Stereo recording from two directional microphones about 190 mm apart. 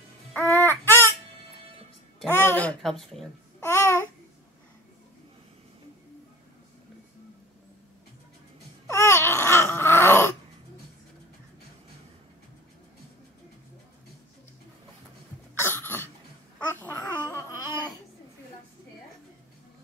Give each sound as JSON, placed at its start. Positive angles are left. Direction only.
{"t": 0.4, "sound": "baby cry", "side_deg": -15}
{"t": 0.7, "sound": "baby cry", "side_deg": 10}
{"t": 2.1, "sound": "a child's voice", "side_deg": 10}
{"t": 3.6, "sound": "babbling", "side_deg": 15}
{"t": 8.8, "sound": "a sound", "side_deg": 15}
{"t": 15.5, "sound": "cough", "side_deg": 10}
{"t": 16.5, "sound": "babbling", "side_deg": 10}